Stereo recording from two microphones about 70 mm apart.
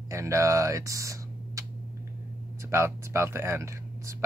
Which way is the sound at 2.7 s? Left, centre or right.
Right.